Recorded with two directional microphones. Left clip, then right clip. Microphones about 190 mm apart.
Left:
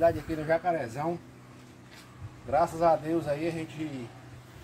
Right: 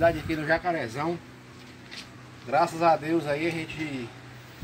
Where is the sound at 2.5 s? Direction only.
10° left (ahead or behind).